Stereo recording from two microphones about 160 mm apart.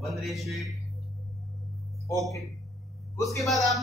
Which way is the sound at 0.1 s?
Centre (ahead or behind).